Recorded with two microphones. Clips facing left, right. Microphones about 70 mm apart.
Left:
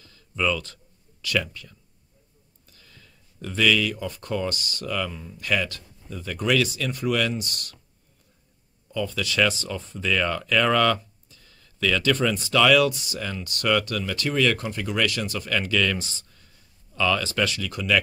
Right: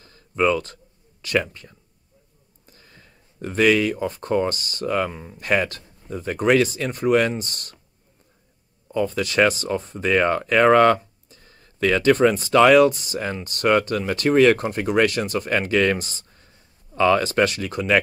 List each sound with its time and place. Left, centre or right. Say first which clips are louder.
0.0 s a sound: right 6 dB; right
1.2 s speech: right 4 dB; right
8.8 s speech: right 5 dB; right